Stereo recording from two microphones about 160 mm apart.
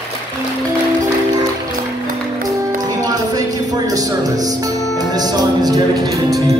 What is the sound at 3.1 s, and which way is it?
Music, 20° right (ahead or behind).